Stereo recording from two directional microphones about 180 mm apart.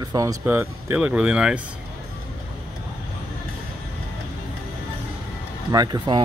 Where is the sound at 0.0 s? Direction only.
20° right (ahead or behind).